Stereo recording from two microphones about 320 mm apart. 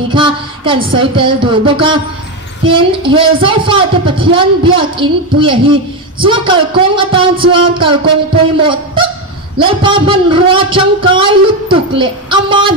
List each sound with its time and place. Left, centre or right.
0.1 s music: centre
2.6 s speech: centre